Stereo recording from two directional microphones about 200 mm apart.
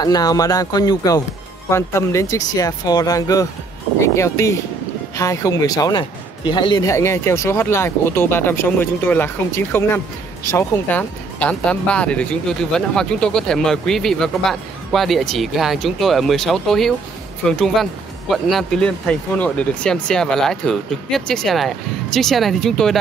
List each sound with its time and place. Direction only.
0.0 s speech: 20° left (ahead or behind); by 22.9 s centre (ahead or behind)